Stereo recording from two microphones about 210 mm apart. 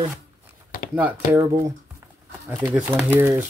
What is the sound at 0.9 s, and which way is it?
Speech, 10° right (ahead or behind).